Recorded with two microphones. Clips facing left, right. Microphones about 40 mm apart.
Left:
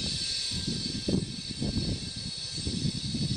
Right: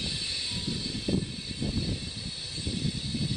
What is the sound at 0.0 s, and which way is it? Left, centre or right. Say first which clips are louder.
Vehicle: right 1 dB; right.